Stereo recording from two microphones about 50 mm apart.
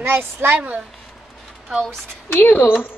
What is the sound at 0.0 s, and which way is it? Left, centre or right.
Speech, right.